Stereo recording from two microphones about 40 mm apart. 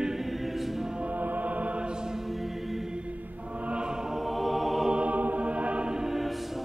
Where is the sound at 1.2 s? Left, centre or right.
Right.